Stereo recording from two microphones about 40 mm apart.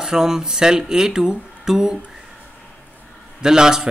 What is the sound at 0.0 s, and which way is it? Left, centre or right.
Speech, centre.